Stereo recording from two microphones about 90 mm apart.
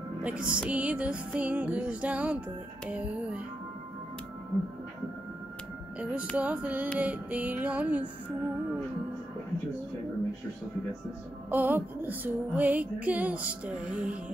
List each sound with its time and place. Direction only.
0.2 s music: 10° right (ahead or behind)
6.3 s music: 15° right (ahead or behind)
11.5 s music: 20° right (ahead or behind)